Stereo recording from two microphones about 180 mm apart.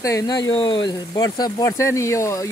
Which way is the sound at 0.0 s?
20° left (ahead or behind).